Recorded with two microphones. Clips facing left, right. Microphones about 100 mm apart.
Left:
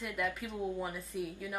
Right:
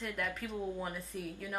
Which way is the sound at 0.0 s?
Centre (ahead or behind).